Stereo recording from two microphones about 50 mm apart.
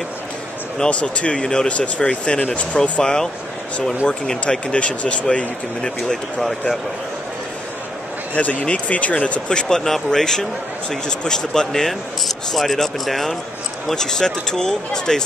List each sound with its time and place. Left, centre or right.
0.8 s speech: left
8.4 s speech: left
9.8 s speech: centre